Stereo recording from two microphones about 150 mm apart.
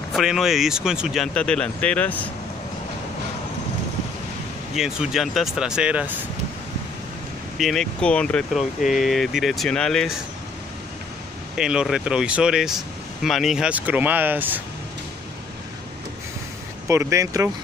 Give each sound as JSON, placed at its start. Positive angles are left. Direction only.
{"t": 0.1, "sound": "speech", "side_deg": -5}
{"t": 4.7, "sound": "speech", "side_deg": -5}
{"t": 7.5, "sound": "speech", "side_deg": 0}
{"t": 11.5, "sound": "speech", "side_deg": -5}
{"t": 16.8, "sound": "speech", "side_deg": -20}